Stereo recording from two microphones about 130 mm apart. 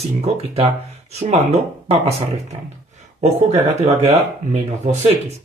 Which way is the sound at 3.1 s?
55° right (ahead or behind).